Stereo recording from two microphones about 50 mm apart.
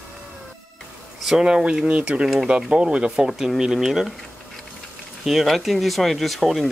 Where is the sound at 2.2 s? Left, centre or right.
Centre.